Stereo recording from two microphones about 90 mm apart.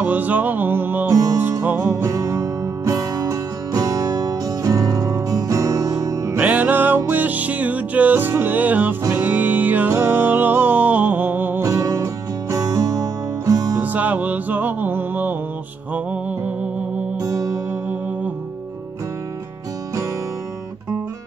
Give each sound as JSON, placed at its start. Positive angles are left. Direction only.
{"t": 0.0, "sound": "music", "side_deg": -20}
{"t": 2.0, "sound": "music", "side_deg": -40}
{"t": 6.4, "sound": "music", "side_deg": -20}
{"t": 11.6, "sound": "music", "side_deg": -35}
{"t": 13.7, "sound": "music", "side_deg": -20}
{"t": 17.2, "sound": "music", "side_deg": -45}